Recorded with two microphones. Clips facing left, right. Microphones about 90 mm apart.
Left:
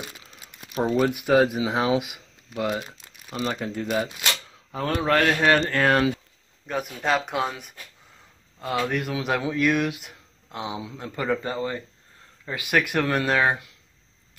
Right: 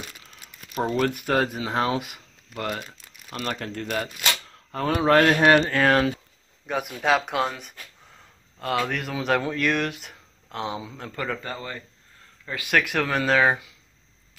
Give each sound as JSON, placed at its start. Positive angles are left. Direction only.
{"t": 0.7, "sound": "speech", "side_deg": 15}
{"t": 5.0, "sound": "speech", "side_deg": -15}
{"t": 11.1, "sound": "a man's voice", "side_deg": 20}
{"t": 12.6, "sound": "speech", "side_deg": 5}